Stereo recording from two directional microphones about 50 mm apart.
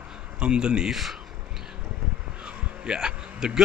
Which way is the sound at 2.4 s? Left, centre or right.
Centre.